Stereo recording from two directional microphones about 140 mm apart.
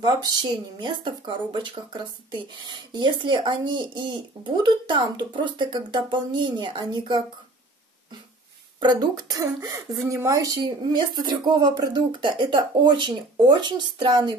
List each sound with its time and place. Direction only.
0.0 s speech: 30° right (ahead or behind)
8.7 s speech: 30° right (ahead or behind)